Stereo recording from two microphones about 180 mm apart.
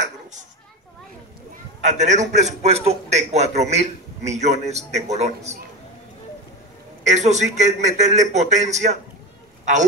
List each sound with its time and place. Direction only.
1.8 s a man's voice: 40° right (ahead or behind)
7.1 s a man's voice: 40° right (ahead or behind)